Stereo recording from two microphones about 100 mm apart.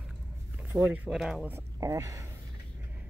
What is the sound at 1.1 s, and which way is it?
Speech, centre (ahead or behind).